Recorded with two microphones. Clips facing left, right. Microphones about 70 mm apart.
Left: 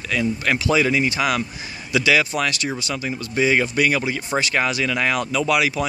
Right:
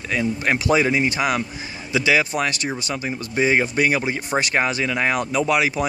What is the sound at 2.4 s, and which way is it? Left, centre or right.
A man's voice, right.